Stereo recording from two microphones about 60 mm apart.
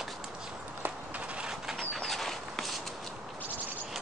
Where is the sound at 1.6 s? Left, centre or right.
Centre.